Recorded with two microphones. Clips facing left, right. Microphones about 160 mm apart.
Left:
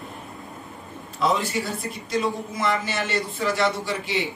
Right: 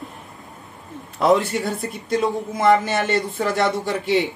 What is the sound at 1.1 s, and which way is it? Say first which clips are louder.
A man's voice: right 6 dB; 55° right (ahead or behind).